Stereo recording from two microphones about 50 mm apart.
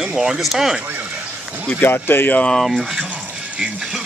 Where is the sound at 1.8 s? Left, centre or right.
Left.